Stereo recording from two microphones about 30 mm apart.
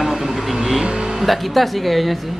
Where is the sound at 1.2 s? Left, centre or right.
Centre.